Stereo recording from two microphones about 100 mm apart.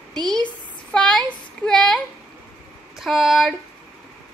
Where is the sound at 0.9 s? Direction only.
10° left (ahead or behind).